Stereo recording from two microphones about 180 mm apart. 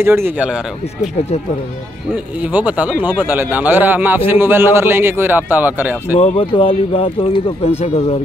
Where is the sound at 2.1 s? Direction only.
10° right (ahead or behind).